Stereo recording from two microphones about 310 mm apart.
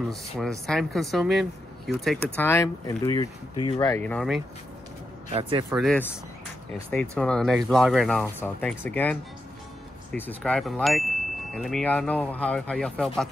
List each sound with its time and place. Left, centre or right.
0.1 s speech: centre
5.3 s speech: centre
5.8 s speech: centre
7.2 s speech: centre